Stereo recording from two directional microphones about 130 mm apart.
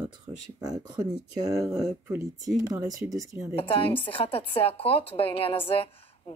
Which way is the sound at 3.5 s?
45° left (ahead or behind).